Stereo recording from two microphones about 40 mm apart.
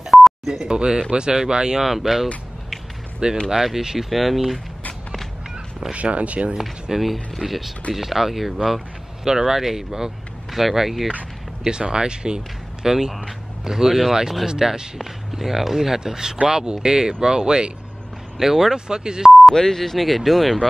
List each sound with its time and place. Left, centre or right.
0.0 s telephone dialing: centre
0.5 s speech: centre
1.8 s speech: centre
3.4 s speech: centre
5.9 s speech: right
6.6 s speech: centre
9.2 s speech: centre
11.8 s speech: right
12.8 s speech: centre
18.4 s speech: centre
19.5 s speech: centre